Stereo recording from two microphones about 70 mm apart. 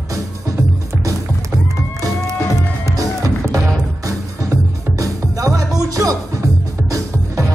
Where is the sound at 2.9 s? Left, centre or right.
Right.